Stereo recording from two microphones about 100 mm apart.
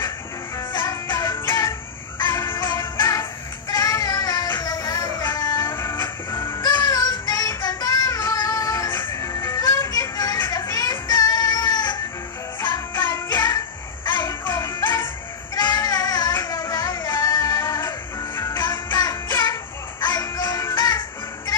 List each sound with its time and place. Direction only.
0.7 s music: 40° left (ahead or behind)
1.2 s music: 30° left (ahead or behind)
2.6 s music: 40° left (ahead or behind)
3.0 s music: 25° left (ahead or behind)
6.7 s child singing: 35° left (ahead or behind)
9.1 s music: 30° left (ahead or behind)
13.3 s child singing: 35° left (ahead or behind)
14.1 s music: 40° left (ahead or behind)
18.6 s music: 40° left (ahead or behind)